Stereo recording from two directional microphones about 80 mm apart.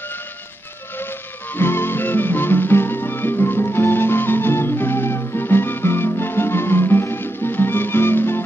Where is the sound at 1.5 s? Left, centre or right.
Left.